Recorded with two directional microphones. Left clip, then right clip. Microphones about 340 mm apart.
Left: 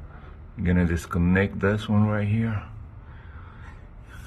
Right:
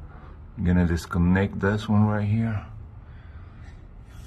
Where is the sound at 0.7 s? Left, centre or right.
Centre.